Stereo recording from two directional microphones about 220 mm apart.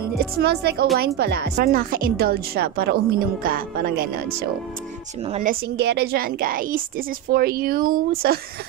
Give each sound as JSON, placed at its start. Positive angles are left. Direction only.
{"t": 0.2, "sound": "a woman's voice", "side_deg": -45}
{"t": 5.2, "sound": "a woman's voice", "side_deg": -25}
{"t": 5.5, "sound": "a woman's voice", "side_deg": -50}